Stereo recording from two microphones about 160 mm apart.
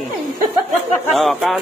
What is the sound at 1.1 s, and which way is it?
Speech, centre (ahead or behind).